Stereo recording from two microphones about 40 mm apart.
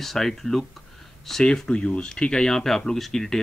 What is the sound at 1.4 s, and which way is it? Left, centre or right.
Speech, left.